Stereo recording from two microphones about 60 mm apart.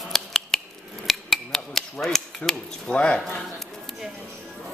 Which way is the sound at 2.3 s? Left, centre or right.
Centre.